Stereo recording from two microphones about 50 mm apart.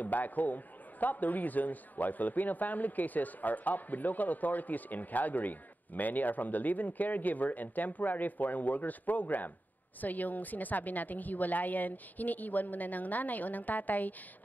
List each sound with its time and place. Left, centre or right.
0.0 s a man's voice: left